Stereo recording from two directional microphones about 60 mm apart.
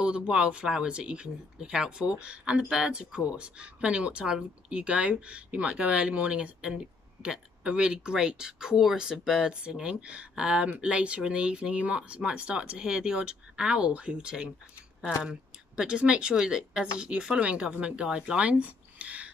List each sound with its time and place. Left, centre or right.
0.3 s speech: centre